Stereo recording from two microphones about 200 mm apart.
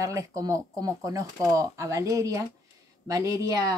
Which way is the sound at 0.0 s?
15° right (ahead or behind).